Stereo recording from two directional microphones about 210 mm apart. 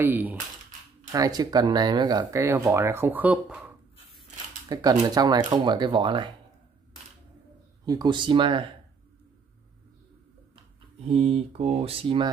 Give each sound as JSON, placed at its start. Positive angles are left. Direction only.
{"t": 0.0, "sound": "speech", "side_deg": -10}
{"t": 4.6, "sound": "speech", "side_deg": -20}
{"t": 7.8, "sound": "speech", "side_deg": -15}
{"t": 11.1, "sound": "speech", "side_deg": -30}